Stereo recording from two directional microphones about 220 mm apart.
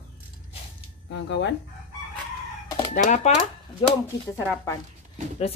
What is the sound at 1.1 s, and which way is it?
Speech, 50° left (ahead or behind).